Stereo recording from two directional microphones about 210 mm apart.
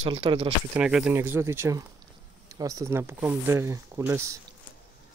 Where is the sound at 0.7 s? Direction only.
5° right (ahead or behind).